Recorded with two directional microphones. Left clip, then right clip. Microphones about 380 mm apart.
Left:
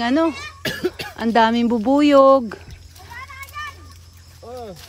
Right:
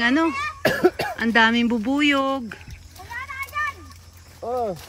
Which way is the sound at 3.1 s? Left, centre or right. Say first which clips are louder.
Right 5 dB; centre.